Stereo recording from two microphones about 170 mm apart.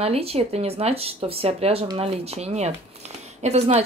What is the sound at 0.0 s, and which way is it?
Speech, 35° right (ahead or behind).